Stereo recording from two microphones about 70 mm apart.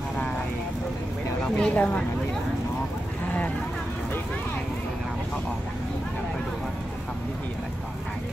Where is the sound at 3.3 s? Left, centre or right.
Left.